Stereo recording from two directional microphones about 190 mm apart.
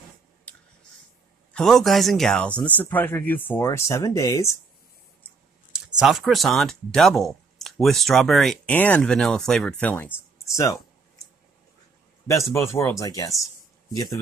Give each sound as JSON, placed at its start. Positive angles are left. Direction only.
{"t": 1.5, "sound": "speech", "side_deg": 0}
{"t": 5.9, "sound": "speech", "side_deg": 0}
{"t": 12.6, "sound": "speech", "side_deg": 15}